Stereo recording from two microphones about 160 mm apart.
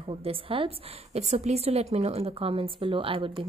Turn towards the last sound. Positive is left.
turn(degrees=-35)  # may be behind; listen again after turning